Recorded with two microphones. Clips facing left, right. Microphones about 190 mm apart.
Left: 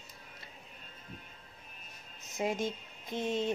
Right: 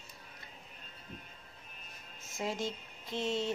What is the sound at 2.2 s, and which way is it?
Speech, 20° left (ahead or behind).